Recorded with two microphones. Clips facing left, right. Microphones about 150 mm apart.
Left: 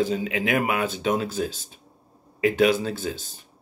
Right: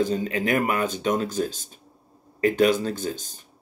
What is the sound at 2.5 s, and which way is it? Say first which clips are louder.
Speech: even; 10° left (ahead or behind).